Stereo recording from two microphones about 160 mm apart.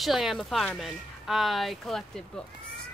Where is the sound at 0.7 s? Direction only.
Centre (ahead or behind).